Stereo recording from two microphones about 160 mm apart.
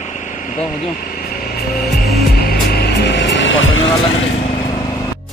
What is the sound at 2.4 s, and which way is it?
Music, 85° left.